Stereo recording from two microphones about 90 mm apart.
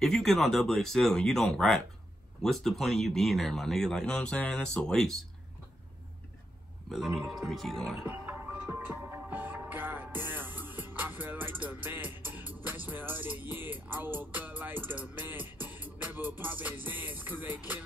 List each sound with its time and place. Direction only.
0.0 s speech: 5° left (ahead or behind)
6.9 s speech: centre (ahead or behind)
8.1 s music: 20° right (ahead or behind)